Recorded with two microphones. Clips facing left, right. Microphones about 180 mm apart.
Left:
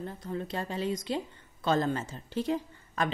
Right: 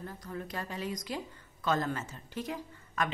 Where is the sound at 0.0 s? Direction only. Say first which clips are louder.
Left 5 dB; 25° left (ahead or behind).